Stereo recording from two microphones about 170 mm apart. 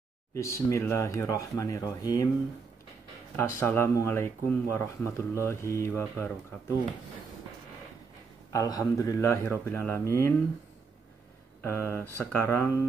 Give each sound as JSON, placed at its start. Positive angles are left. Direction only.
{"t": 0.3, "sound": "speech", "side_deg": 15}
{"t": 3.3, "sound": "speech", "side_deg": 15}
{"t": 8.5, "sound": "speech", "side_deg": 20}
{"t": 11.6, "sound": "speech", "side_deg": 15}